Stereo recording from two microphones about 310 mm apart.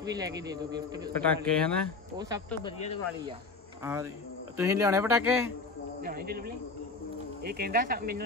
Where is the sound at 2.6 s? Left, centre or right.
Centre.